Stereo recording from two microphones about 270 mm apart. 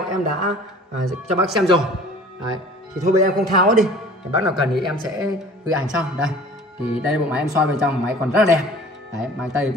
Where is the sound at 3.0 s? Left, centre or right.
Right.